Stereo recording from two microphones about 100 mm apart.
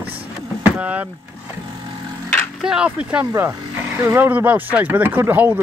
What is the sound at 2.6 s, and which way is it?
Speech, 5° right (ahead or behind).